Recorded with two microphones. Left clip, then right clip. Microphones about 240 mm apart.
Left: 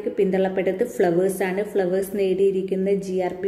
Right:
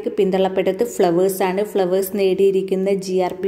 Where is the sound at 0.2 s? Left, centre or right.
Centre.